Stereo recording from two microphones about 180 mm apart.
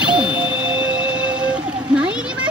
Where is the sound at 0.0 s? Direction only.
5° right (ahead or behind).